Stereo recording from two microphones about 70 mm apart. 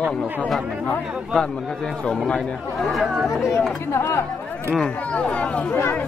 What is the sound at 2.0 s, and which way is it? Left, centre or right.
Speech, centre.